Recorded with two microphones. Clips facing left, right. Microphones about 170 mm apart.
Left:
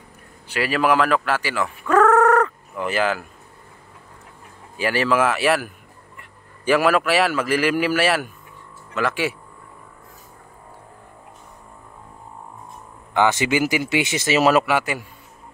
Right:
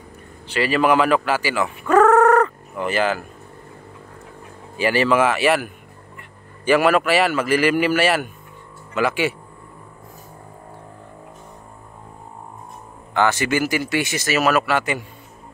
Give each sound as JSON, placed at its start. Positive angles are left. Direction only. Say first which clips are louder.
{"t": 0.5, "sound": "speech", "louder": "right 2 dB", "side_deg": 5}
{"t": 4.7, "sound": "a man's voice", "louder": "right 2 dB", "side_deg": 0}
{"t": 13.1, "sound": "speech", "louder": "even", "side_deg": 20}
{"t": 14.7, "sound": "a man's voice", "louder": "even", "side_deg": 5}